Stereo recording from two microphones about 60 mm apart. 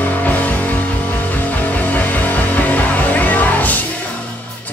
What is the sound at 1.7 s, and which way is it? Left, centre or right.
Music, left.